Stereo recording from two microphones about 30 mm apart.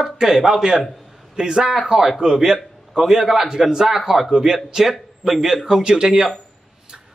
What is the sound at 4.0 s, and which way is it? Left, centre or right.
Speech, centre.